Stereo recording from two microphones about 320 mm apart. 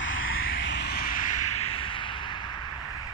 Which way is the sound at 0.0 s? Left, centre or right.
Left.